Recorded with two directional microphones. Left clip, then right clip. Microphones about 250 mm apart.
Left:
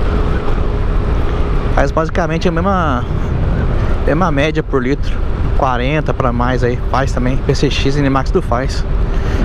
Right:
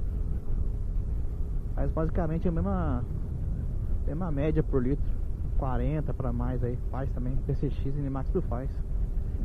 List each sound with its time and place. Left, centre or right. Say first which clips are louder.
1.8 s speech: left 17 dB; centre
4.1 s speech: left 17 dB; centre